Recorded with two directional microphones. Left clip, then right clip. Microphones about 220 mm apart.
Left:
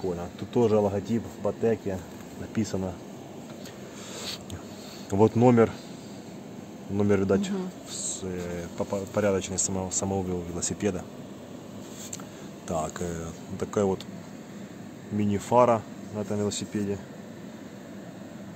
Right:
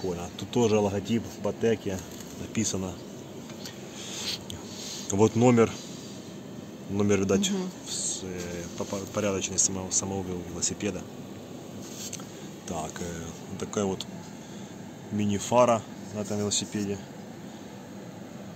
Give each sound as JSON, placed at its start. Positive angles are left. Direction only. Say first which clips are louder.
{"t": 0.2, "sound": "speech", "louder": "left 1 dB", "side_deg": 15}
{"t": 2.5, "sound": "speech", "louder": "even", "side_deg": 20}
{"t": 5.1, "sound": "speech", "louder": "left 1 dB", "side_deg": 15}
{"t": 7.0, "sound": "speech", "louder": "left 1 dB", "side_deg": 10}
{"t": 7.9, "sound": "speech", "louder": "right 1 dB", "side_deg": 45}
{"t": 12.6, "sound": "speech", "louder": "left 5 dB", "side_deg": 40}
{"t": 15.3, "sound": "speech", "louder": "left 1 dB", "side_deg": 20}